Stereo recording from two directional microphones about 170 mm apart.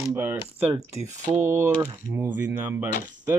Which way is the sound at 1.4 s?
15° right (ahead or behind).